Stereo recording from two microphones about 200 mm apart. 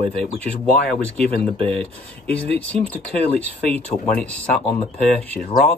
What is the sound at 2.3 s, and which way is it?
Speech, 5° left (ahead or behind).